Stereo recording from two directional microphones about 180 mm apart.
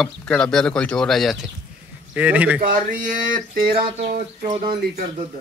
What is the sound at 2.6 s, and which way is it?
Speech, 50° right (ahead or behind).